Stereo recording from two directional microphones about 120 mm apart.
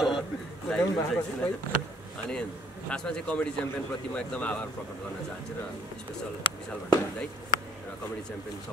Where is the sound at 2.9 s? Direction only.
5° left (ahead or behind).